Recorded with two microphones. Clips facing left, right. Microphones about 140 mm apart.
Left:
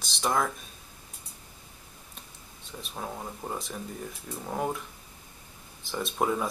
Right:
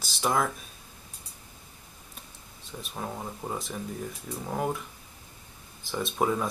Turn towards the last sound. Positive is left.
turn(degrees=0)  # may be behind; listen again after turning